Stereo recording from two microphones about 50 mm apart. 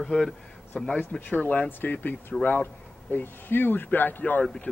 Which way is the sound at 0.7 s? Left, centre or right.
Left.